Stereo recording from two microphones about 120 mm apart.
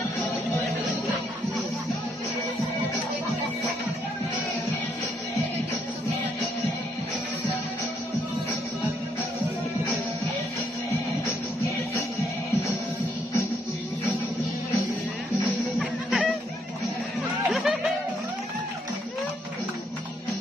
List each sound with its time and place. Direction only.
11.2 s music: 25° left (ahead or behind)
15.8 s music: centre (ahead or behind)
17.5 s music: centre (ahead or behind)